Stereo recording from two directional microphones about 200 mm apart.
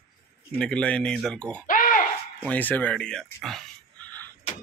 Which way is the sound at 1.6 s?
45° left (ahead or behind).